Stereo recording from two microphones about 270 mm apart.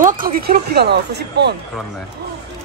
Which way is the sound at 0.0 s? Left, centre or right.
Right.